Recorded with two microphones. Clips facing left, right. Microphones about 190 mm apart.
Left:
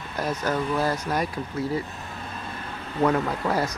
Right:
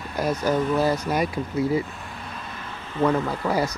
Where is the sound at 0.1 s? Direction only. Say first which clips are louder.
Right 4 dB; 10° right (ahead or behind).